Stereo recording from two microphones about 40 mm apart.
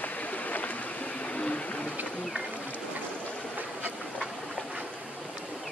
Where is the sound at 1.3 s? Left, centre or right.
Left.